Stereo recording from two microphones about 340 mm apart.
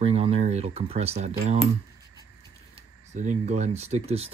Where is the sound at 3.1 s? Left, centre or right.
Right.